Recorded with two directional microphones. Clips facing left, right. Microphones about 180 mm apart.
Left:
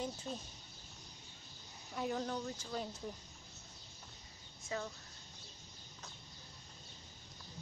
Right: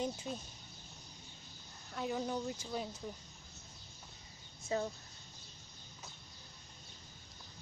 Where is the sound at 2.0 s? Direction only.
5° right (ahead or behind).